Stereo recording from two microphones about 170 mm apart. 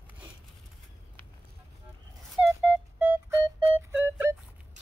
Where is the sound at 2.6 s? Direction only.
10° right (ahead or behind).